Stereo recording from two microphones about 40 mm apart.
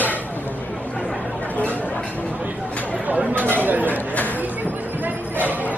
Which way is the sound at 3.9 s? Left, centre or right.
Left.